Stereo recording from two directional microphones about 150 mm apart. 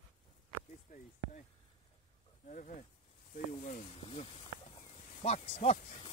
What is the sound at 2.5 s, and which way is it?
Speech, 60° left (ahead or behind).